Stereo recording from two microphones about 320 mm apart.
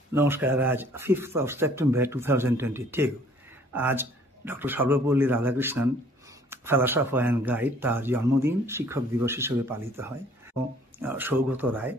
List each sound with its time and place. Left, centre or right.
0.1 s speech: centre